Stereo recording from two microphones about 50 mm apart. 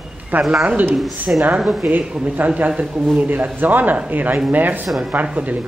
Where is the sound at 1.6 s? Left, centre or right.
Centre.